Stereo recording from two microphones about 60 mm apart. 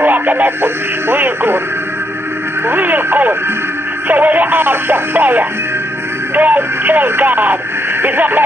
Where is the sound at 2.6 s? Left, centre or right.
Right.